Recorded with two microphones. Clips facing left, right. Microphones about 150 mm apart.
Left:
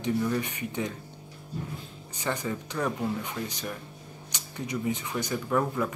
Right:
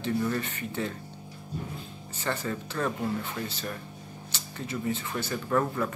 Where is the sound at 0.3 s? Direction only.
15° left (ahead or behind).